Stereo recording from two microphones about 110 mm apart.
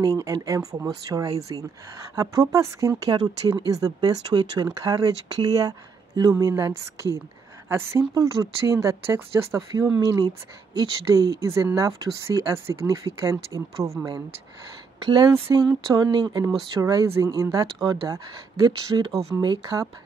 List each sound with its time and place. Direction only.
0.0 s speech: 35° right (ahead or behind)
9.9 s speech: 40° right (ahead or behind)
15.0 s speech: 45° right (ahead or behind)
16.8 s speech: 30° right (ahead or behind)